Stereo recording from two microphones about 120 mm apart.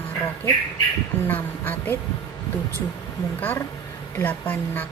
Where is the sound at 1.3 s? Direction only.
15° left (ahead or behind).